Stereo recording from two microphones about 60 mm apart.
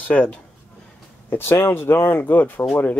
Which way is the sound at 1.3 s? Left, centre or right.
Left.